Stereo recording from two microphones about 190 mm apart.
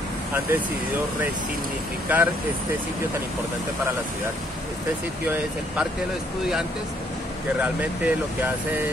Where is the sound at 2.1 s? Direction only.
10° right (ahead or behind).